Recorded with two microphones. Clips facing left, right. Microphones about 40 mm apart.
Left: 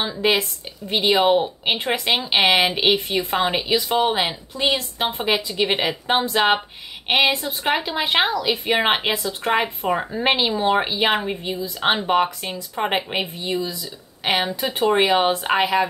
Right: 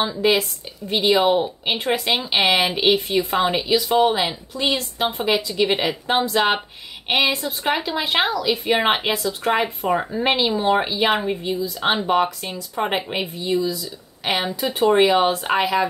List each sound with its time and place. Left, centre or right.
0.2 s speech: centre
4.0 s speech: centre
4.7 s speech: left
15.6 s speech: left